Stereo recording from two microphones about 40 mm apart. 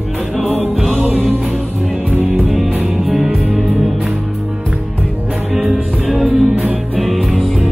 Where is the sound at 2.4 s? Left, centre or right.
Centre.